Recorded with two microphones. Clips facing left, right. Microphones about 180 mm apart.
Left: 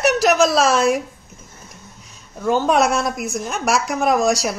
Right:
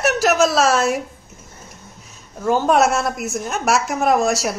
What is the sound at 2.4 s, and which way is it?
A woman's voice, centre (ahead or behind).